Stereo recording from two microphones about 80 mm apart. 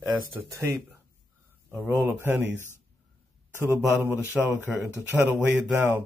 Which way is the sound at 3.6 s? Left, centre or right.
Right.